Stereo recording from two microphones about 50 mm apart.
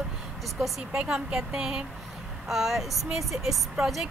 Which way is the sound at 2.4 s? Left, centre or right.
Centre.